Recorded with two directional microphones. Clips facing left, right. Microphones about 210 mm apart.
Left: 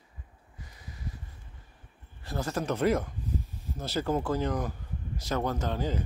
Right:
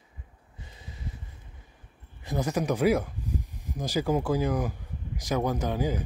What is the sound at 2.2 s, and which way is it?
Speech, 15° right (ahead or behind).